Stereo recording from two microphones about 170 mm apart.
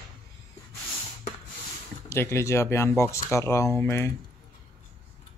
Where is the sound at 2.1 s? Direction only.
15° left (ahead or behind).